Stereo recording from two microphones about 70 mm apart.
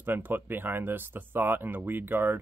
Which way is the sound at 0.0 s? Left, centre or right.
Right.